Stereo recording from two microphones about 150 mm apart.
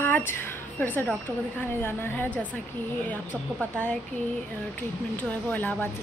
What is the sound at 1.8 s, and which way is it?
Speech, 15° left (ahead or behind).